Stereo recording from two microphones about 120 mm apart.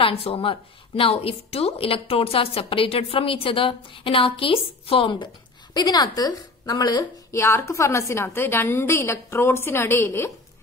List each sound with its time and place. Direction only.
0.0 s a woman's voice: 50° left (ahead or behind); by 7.3 s 35° left (ahead or behind)
7.3 s a woman's voice: 20° left (ahead or behind)